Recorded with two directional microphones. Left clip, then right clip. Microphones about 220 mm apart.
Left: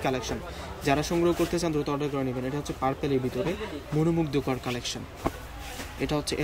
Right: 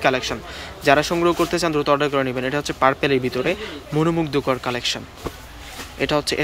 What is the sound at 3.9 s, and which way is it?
Speech, 30° right (ahead or behind).